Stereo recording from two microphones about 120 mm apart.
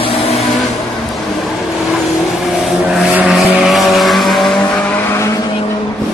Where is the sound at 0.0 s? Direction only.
55° left (ahead or behind).